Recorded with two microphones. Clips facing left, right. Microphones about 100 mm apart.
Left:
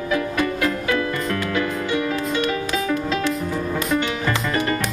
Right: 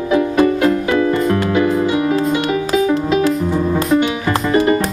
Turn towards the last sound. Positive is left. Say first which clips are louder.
# right 8 dB
turn(degrees=-25)  # may be behind; listen again after turning